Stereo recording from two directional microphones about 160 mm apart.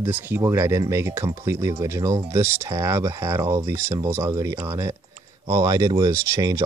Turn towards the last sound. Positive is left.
turn(degrees=-20)  # may be behind; listen again after turning